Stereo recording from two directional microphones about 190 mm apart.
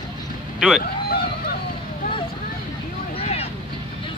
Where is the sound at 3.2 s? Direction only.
30° left (ahead or behind).